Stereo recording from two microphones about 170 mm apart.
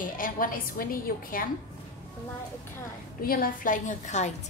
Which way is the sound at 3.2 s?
55° left (ahead or behind).